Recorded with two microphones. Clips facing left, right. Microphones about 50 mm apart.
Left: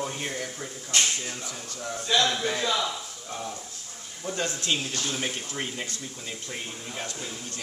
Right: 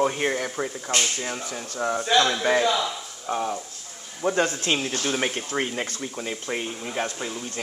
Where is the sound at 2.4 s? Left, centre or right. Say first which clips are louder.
Right 6 dB; right.